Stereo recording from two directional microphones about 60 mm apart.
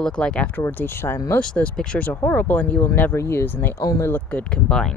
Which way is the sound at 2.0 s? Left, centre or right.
Left.